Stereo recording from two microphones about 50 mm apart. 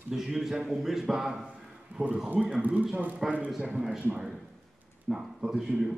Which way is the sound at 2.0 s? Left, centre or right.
Right.